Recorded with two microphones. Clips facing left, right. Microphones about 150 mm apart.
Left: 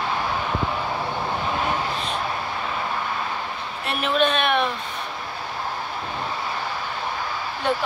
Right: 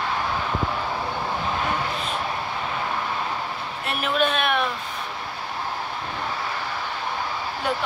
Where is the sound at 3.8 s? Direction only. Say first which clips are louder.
Left 2 dB; 5° right (ahead or behind).